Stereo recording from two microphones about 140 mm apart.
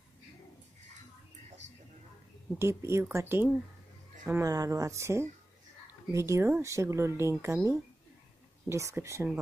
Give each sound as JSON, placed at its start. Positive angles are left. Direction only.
{"t": 2.6, "sound": "speech", "side_deg": -20}